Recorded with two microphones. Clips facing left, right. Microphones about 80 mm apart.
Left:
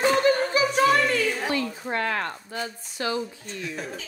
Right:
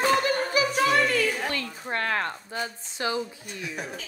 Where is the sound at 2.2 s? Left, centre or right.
Right.